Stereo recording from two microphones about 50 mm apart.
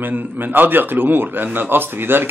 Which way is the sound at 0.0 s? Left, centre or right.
Right.